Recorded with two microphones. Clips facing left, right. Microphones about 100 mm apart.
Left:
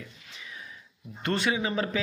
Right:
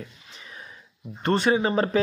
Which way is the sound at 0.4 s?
40° right (ahead or behind).